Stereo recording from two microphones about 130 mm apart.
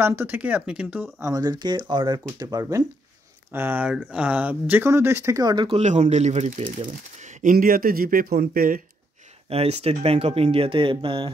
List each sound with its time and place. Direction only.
0.0 s speech: 20° right (ahead or behind)
1.2 s speech: 25° right (ahead or behind)
3.5 s speech: 15° right (ahead or behind); by 5.7 s 30° right (ahead or behind)
5.7 s speech: 60° right (ahead or behind)
7.2 s speech: 75° right (ahead or behind); by 8.8 s 90° right
9.5 s speech: 50° right (ahead or behind)